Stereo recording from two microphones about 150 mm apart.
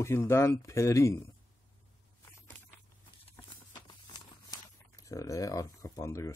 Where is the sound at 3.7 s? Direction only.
30° left (ahead or behind).